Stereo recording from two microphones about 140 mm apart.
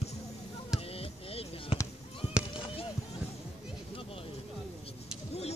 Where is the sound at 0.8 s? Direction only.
45° left (ahead or behind).